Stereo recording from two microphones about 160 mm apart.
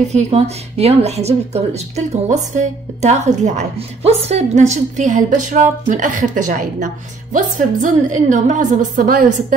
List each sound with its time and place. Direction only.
0.1 s speech: 40° right (ahead or behind); by 9.6 s 60° right (ahead or behind)